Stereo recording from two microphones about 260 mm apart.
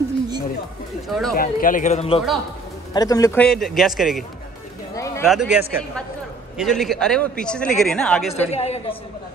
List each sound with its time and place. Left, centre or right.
1.0 s a man's voice: centre
1.3 s a man's voice: left; by 4.2 s centre
4.9 s a sound: centre
5.2 s a man's voice: centre
8.5 s a man's voice: left